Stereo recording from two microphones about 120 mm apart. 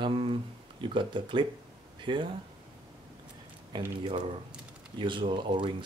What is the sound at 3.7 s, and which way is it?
Speech, 40° right (ahead or behind).